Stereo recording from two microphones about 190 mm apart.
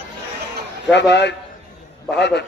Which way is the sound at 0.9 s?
65° left (ahead or behind).